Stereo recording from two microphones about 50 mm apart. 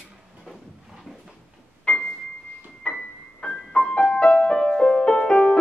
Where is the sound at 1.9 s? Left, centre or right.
Centre.